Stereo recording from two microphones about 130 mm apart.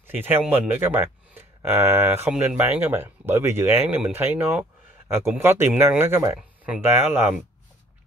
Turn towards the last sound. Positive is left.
turn(degrees=-20)  # may be behind; listen again after turning